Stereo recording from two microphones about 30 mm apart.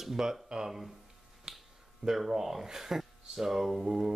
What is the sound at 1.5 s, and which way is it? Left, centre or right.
Finger snapping, right.